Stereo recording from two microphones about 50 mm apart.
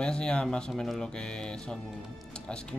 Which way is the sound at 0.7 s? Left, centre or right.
Centre.